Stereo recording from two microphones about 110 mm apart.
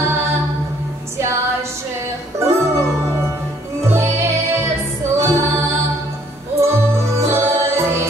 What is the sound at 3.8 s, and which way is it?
Music, 25° right (ahead or behind).